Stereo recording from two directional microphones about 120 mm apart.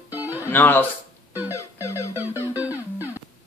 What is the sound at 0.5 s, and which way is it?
Speech, 15° left (ahead or behind).